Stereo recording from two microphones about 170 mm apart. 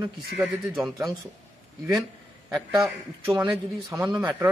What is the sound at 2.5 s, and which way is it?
Speech, 20° right (ahead or behind).